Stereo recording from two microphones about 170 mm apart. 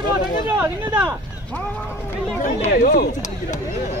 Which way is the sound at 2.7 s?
60° left (ahead or behind).